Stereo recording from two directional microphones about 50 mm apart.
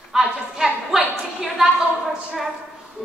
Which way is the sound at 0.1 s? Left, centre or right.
Centre.